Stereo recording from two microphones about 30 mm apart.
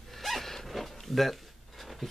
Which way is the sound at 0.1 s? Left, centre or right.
Centre.